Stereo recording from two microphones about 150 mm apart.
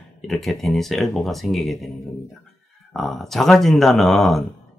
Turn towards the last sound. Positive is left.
turn(degrees=0)  # may be behind; listen again after turning